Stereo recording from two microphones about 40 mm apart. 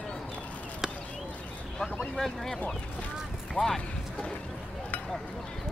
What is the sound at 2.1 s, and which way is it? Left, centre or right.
Speech, centre.